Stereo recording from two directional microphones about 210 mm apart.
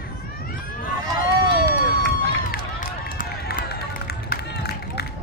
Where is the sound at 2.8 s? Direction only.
40° left (ahead or behind).